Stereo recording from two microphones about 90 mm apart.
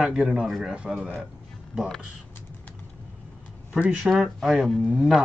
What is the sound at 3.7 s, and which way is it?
Speech, 10° right (ahead or behind).